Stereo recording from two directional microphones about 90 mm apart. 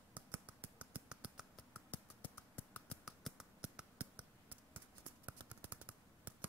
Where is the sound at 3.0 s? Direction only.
5° right (ahead or behind); by 4.8 s 20° right (ahead or behind).